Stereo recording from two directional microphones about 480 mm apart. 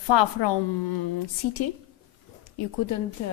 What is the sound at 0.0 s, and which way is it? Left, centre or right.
A woman's voice, left.